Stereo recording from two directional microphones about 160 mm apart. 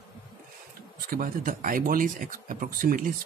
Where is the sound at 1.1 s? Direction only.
60° right (ahead or behind).